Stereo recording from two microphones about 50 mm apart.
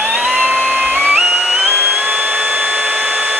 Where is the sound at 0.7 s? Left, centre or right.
Right.